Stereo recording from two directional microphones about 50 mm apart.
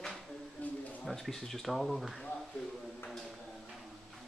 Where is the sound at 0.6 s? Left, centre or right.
Left.